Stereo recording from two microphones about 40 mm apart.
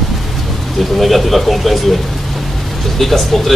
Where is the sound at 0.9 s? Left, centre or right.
Centre.